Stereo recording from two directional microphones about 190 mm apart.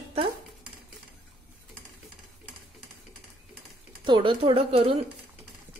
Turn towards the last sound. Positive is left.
turn(degrees=-30)  # may be behind; listen again after turning